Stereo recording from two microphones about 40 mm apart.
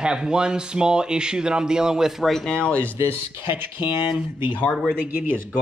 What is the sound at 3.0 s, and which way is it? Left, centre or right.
Speech, right.